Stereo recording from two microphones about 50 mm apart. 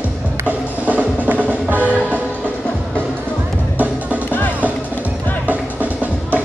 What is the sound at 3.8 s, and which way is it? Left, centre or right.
Music, right.